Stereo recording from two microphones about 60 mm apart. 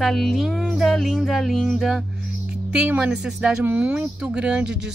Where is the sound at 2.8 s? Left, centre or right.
Centre.